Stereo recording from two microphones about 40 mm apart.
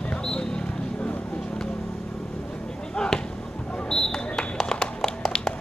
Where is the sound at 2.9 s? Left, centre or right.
Centre.